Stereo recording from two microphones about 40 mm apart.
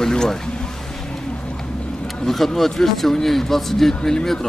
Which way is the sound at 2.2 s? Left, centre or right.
Centre.